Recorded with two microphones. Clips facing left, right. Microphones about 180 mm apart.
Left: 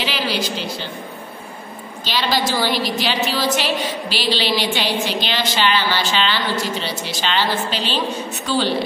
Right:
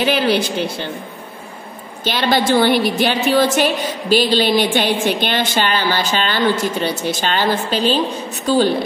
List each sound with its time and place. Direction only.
0.0 s a woman's voice: 55° right (ahead or behind)
2.0 s a woman's voice: 55° right (ahead or behind)